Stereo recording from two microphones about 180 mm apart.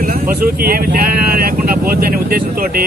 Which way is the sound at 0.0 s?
55° right (ahead or behind).